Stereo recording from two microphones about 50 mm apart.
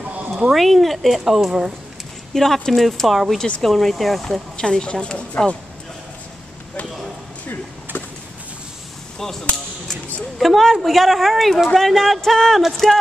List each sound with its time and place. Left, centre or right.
0.0 s a sound: right
0.6 s a man's voice: centre
2.3 s a man's voice: centre
4.6 s speech: centre
5.4 s speech: left
10.4 s a man's voice: centre